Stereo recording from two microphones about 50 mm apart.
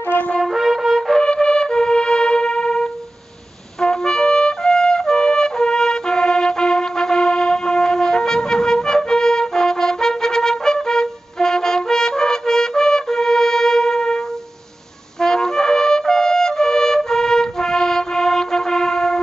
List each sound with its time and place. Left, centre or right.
0.4 s brass instrument: centre
1.2 s music: centre